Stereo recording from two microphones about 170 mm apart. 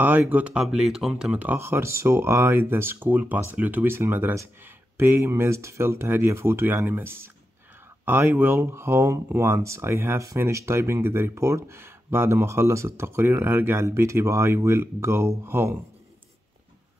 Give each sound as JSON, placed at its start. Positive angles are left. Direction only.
{"t": 0.0, "sound": "speech", "side_deg": -10}